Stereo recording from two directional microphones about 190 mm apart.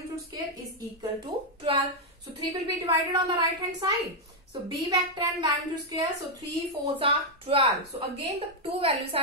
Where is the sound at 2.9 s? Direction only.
20° right (ahead or behind).